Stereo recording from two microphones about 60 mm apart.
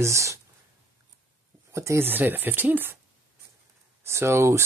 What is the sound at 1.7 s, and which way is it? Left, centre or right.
Speech, right.